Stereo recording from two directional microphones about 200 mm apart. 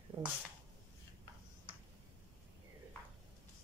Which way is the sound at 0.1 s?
10° right (ahead or behind).